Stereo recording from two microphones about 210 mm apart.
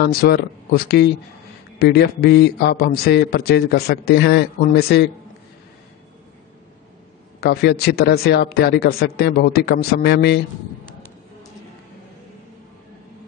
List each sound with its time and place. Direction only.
0.0 s a man's voice: 50° left (ahead or behind)
7.3 s a man's voice: 50° left (ahead or behind)